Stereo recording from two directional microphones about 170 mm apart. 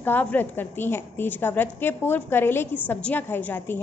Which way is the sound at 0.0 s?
10° left (ahead or behind).